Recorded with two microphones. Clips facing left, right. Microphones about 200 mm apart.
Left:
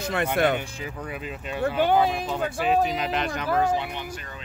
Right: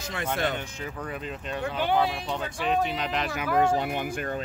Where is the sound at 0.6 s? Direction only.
10° left (ahead or behind).